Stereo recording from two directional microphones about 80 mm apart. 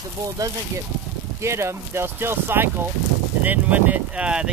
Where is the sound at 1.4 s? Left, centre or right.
Right; by 4.4 s centre.